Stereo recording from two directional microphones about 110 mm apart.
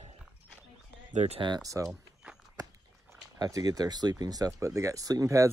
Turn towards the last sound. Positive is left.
turn(degrees=-30)  # may be behind; listen again after turning